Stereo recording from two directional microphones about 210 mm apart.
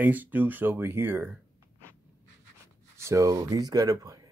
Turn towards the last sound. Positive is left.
turn(degrees=-15)  # may be behind; listen again after turning